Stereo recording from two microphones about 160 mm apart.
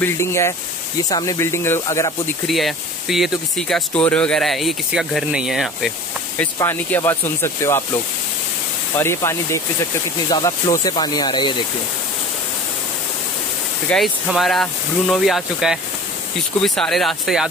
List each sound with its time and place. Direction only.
0.0 s speech: 15° left (ahead or behind)
2.4 s speech: centre (ahead or behind)
6.3 s speech: 15° left (ahead or behind)
9.0 s speech: 15° left (ahead or behind)
13.8 s speech: centre (ahead or behind)